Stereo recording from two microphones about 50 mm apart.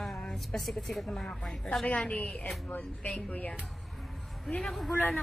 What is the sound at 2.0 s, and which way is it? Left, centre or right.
A woman's voice, left.